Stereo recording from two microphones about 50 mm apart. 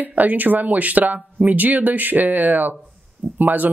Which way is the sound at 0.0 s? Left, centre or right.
Right.